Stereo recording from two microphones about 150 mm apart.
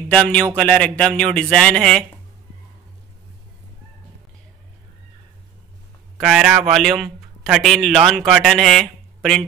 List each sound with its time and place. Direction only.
0.1 s a man's voice: 5° left (ahead or behind)
6.1 s a man's voice: centre (ahead or behind)